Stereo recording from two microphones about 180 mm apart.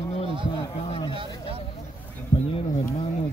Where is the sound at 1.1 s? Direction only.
30° right (ahead or behind).